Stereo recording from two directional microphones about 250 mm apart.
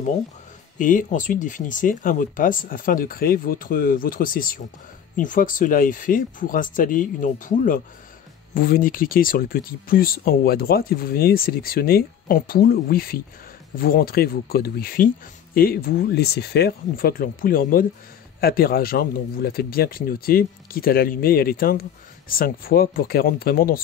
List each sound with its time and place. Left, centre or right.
0.7 s speech: left